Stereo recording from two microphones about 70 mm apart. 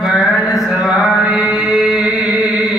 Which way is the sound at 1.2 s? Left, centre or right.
Centre.